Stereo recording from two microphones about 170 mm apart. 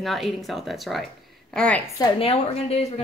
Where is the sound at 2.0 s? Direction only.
35° left (ahead or behind).